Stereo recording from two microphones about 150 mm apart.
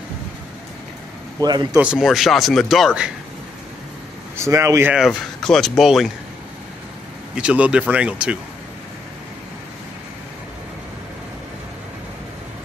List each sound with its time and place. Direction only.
1.4 s speech: 25° right (ahead or behind)
1.8 s speech: 5° right (ahead or behind)
4.4 s speech: 20° right (ahead or behind)
4.9 s speech: centre (ahead or behind)
7.3 s speech: 10° right (ahead or behind)